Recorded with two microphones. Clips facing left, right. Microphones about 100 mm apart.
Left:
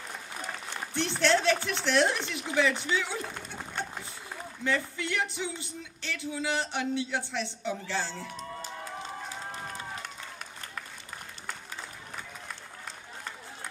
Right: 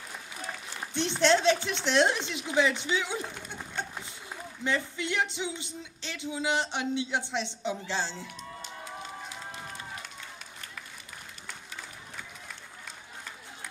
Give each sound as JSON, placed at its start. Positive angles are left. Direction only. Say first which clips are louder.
{"t": 0.9, "sound": "music", "louder": "right 2 dB", "side_deg": -20}
{"t": 4.6, "sound": "music", "louder": "even", "side_deg": -20}